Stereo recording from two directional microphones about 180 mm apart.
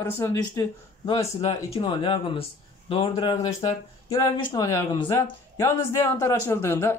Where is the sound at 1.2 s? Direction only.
35° left (ahead or behind).